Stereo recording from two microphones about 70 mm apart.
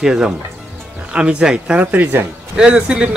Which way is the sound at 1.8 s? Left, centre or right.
Right.